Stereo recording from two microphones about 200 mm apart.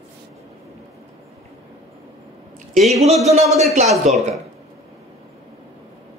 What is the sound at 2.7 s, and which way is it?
Speech, centre (ahead or behind).